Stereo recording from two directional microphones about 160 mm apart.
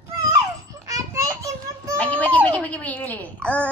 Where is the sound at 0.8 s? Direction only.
20° right (ahead or behind).